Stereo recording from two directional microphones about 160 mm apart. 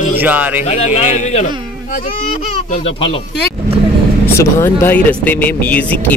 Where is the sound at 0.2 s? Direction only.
10° right (ahead or behind).